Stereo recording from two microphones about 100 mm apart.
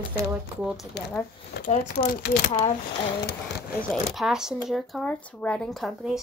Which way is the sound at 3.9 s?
Centre (ahead or behind).